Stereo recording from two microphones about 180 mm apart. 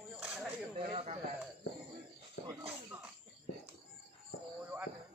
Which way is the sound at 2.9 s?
10° right (ahead or behind).